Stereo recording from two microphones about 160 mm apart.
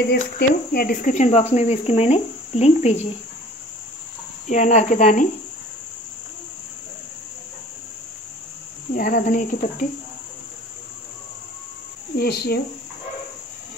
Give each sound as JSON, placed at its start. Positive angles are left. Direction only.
{"t": 0.1, "sound": "speech", "side_deg": 75}
{"t": 4.5, "sound": "speech", "side_deg": 50}
{"t": 8.9, "sound": "cricket", "side_deg": 60}
{"t": 12.2, "sound": "speech", "side_deg": 85}